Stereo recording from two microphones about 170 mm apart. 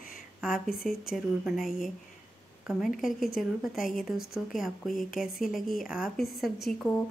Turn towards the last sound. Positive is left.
turn(degrees=5)  # may be behind; listen again after turning